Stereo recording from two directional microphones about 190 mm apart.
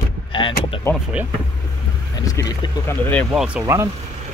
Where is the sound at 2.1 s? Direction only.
20° left (ahead or behind).